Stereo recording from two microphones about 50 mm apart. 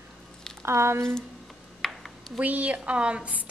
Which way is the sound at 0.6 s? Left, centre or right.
Right.